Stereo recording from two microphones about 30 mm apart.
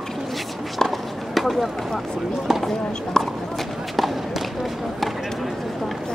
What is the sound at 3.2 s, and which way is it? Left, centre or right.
Speech, left.